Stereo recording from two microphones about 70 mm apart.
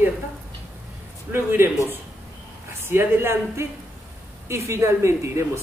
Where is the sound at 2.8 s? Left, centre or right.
Right.